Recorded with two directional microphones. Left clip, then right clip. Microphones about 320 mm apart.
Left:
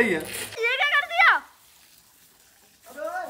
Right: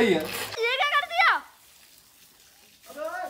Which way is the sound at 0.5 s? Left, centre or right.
Centre.